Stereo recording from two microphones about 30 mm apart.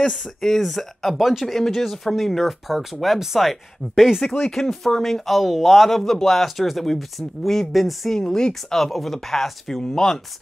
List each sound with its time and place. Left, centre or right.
0.0 s speech: centre
2.7 s speech: centre
4.3 s speech: centre
5.2 s speech: centre
8.1 s speech: left
8.7 s speech: centre